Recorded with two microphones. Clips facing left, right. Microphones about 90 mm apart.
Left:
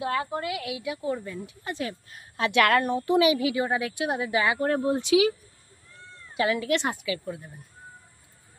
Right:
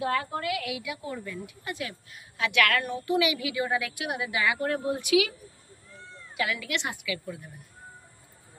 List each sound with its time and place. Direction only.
0.0 s a woman's voice: 25° left (ahead or behind)
6.3 s speech: 35° left (ahead or behind)